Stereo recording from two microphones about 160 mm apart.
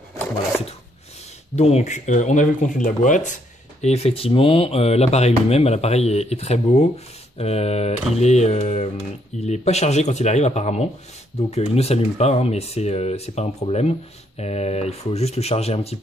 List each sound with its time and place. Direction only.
1.6 s speech: 40° left (ahead or behind)